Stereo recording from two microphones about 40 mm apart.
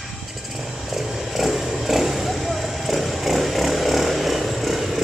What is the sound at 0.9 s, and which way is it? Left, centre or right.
Vehicle, centre.